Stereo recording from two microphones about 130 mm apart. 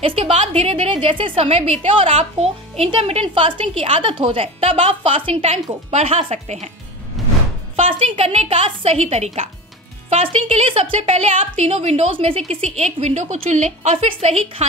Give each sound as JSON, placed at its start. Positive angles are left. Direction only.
{"t": 0.0, "sound": "a woman's voice", "side_deg": -45}
{"t": 7.7, "sound": "a woman's voice", "side_deg": -45}